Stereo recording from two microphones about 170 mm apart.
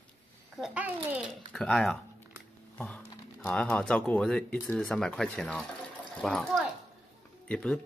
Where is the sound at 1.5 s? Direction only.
5° left (ahead or behind).